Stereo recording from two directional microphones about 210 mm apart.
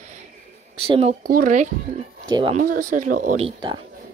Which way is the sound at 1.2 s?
40° right (ahead or behind).